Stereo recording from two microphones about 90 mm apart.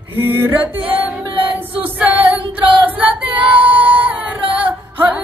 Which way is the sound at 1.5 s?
20° right (ahead or behind).